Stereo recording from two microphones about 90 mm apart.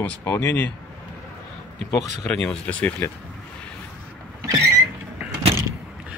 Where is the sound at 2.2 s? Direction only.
10° left (ahead or behind).